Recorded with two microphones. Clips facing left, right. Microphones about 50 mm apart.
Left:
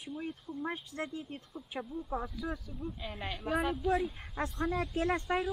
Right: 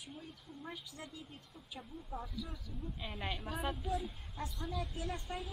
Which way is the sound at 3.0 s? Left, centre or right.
Centre.